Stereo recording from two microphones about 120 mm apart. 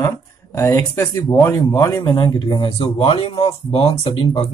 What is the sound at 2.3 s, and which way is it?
Speech, 40° left (ahead or behind).